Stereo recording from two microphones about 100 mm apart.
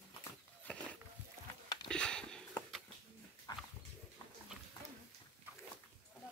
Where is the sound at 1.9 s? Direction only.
10° left (ahead or behind).